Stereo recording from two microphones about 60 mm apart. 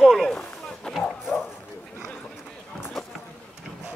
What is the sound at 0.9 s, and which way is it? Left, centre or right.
Bow-wow, centre.